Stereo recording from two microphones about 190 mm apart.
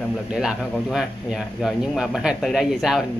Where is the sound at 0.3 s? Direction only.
5° right (ahead or behind).